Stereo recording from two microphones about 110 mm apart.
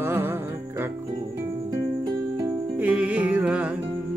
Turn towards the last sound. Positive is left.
turn(degrees=-10)  # may be behind; listen again after turning